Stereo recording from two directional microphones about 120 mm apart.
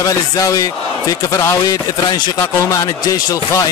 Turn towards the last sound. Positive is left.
turn(degrees=30)  # may be behind; listen again after turning